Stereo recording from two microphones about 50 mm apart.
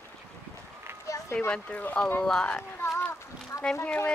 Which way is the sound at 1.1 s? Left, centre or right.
Left.